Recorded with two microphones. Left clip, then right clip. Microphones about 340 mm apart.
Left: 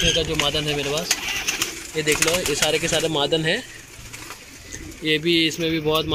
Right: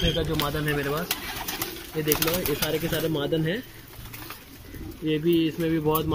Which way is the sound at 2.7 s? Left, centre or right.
Left.